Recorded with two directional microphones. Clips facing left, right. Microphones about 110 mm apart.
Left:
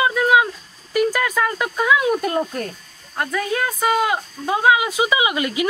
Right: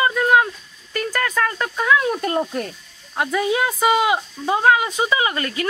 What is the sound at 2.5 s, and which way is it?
Speech, 45° left (ahead or behind).